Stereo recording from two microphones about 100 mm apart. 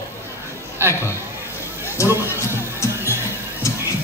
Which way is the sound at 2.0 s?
30° left (ahead or behind).